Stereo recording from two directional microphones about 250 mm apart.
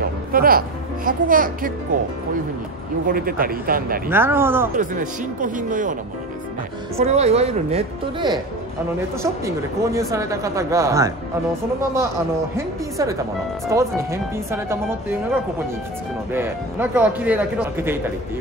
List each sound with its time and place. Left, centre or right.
0.3 s speech: right
3.1 s speech: right
4.1 s speech: centre
4.7 s speech: right
7.0 s a woman's voice: right
9.8 s speech: centre
12.5 s speech: centre
16.3 s speech: centre